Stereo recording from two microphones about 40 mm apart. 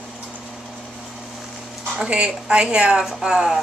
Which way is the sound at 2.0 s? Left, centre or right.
Right.